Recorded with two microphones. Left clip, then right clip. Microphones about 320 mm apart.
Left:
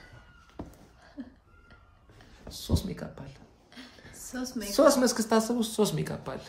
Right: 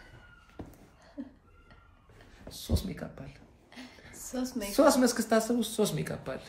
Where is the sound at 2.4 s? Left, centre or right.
Centre.